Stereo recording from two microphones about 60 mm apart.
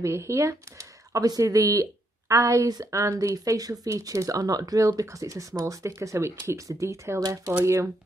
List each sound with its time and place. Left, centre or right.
0.0 s speech: right
1.4 s speech: right
3.2 s speech: right
5.9 s speech: right